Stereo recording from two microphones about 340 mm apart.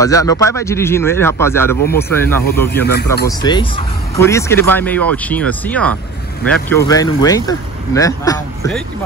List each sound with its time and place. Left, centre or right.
0.0 s speech: centre